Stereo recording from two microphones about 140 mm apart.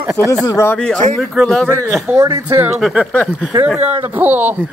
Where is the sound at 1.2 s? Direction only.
Centre (ahead or behind).